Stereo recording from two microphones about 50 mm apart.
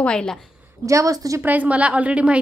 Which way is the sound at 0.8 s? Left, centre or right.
Right.